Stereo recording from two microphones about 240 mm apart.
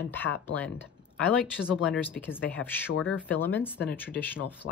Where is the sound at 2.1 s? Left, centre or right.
Centre.